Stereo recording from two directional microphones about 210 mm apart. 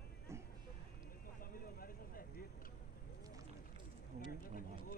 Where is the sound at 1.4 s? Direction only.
45° left (ahead or behind).